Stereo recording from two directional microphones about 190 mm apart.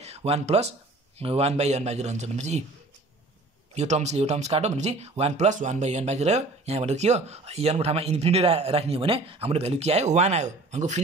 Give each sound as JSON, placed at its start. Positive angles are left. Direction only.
{"t": 0.0, "sound": "speech", "side_deg": -35}
{"t": 3.7, "sound": "speech", "side_deg": -35}